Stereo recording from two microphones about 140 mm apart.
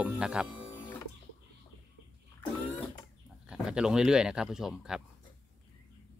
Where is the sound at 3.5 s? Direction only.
5° right (ahead or behind).